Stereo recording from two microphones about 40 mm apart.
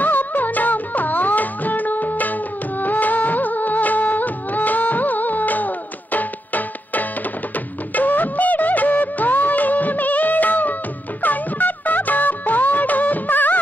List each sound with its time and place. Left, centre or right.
0.0 s music: left